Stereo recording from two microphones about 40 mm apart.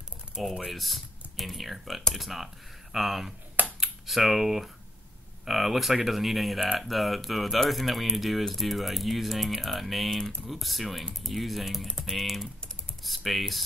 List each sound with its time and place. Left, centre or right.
0.7 s speech: centre
3.6 s computer keyboard: right
4.1 s speech: centre